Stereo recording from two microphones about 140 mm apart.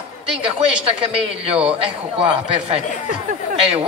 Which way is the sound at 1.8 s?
40° right (ahead or behind).